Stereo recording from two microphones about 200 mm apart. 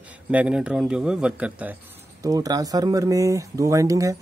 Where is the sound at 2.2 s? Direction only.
20° right (ahead or behind).